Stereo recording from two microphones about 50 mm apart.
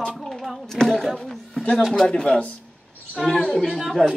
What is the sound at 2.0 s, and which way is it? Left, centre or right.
Speech, centre.